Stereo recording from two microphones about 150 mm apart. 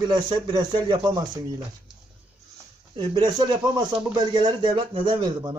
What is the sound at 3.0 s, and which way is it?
Speech, 30° right (ahead or behind).